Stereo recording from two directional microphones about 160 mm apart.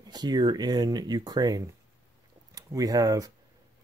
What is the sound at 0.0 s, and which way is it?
Speech, 25° right (ahead or behind).